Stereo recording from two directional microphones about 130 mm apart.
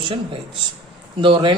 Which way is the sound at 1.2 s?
40° right (ahead or behind).